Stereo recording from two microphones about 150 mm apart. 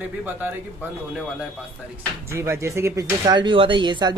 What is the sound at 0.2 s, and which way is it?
Speech, 15° right (ahead or behind).